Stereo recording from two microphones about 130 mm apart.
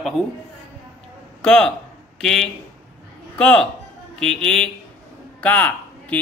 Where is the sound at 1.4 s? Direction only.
5° left (ahead or behind).